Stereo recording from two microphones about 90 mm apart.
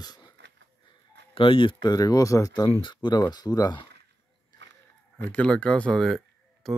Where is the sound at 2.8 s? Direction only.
60° left (ahead or behind).